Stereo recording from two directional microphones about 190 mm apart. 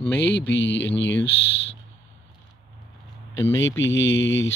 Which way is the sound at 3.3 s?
85° left.